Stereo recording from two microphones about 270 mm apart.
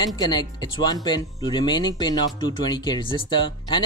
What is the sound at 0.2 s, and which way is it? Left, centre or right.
Speech, centre.